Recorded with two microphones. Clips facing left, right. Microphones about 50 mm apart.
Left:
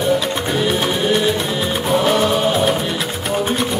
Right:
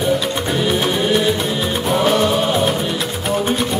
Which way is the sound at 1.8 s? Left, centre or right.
Centre.